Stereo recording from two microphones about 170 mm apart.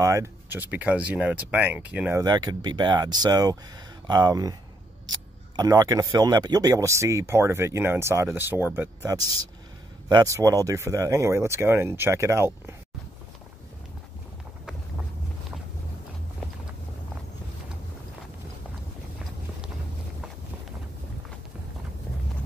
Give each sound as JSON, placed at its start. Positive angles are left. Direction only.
{"t": 0.0, "sound": "speech", "side_deg": -15}
{"t": 2.2, "sound": "speech", "side_deg": -25}
{"t": 5.6, "sound": "speech", "side_deg": -20}